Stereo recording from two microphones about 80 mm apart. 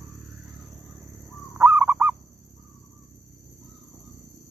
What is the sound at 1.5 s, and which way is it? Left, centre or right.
Fowl, right.